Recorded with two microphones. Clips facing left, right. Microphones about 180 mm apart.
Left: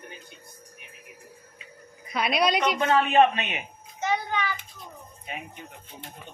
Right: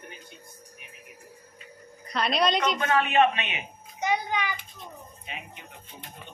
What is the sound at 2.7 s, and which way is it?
Speech, 35° left (ahead or behind).